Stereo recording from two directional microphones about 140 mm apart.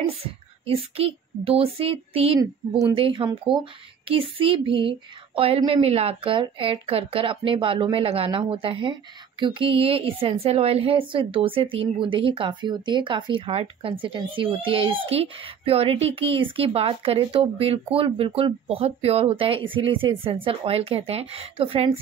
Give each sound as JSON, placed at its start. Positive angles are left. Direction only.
{"t": 0.1, "sound": "a child's voice", "side_deg": -45}